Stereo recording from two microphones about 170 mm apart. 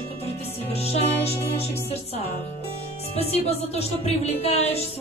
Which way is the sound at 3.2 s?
35° left (ahead or behind).